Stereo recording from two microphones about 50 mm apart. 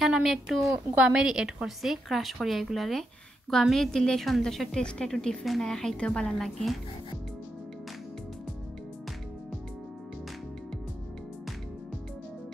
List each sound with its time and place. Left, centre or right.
0.2 s a woman's voice: centre
1.1 s a woman's voice: centre
1.8 s a woman's voice: centre
5.4 s a woman's voice: centre
5.7 s a woman's voice: centre
6.3 s a woman's voice: centre